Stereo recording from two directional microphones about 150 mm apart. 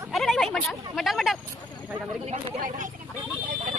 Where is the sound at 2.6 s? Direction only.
60° right (ahead or behind).